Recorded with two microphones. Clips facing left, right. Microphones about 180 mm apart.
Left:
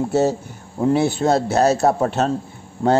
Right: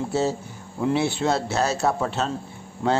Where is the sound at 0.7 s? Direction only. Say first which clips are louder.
Left 5 dB; 40° left (ahead or behind).